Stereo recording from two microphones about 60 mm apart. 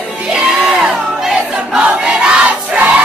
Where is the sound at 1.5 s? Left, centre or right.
Centre.